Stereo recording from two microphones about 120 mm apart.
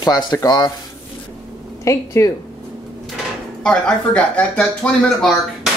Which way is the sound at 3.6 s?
10° left (ahead or behind).